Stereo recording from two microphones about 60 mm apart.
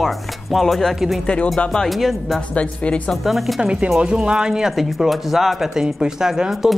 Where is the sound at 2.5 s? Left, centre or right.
Centre.